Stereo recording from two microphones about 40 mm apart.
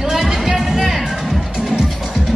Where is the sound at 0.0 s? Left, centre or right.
Centre.